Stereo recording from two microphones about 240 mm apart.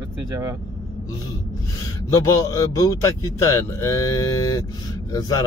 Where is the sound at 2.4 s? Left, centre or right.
Centre.